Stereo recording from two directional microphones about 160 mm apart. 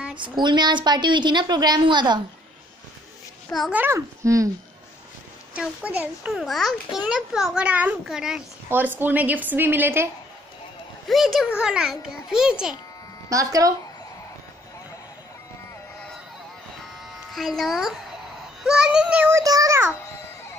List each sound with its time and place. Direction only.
0.2 s a woman's voice: 30° right (ahead or behind)
3.7 s a woman's voice: 15° right (ahead or behind)
5.5 s a child's voice: 10° right (ahead or behind)
11.1 s a child's voice: centre (ahead or behind)
13.3 s a woman's voice: 20° right (ahead or behind)
17.3 s a child's voice: centre (ahead or behind); by 20.0 s 15° right (ahead or behind)